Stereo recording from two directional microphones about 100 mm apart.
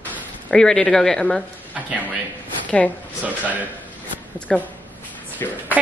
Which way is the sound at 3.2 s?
15° right (ahead or behind).